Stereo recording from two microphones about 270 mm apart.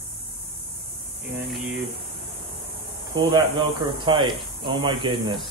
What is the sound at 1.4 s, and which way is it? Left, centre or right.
Speech, centre.